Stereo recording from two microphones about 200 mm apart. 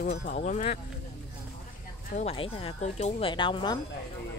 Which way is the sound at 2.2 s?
30° left (ahead or behind).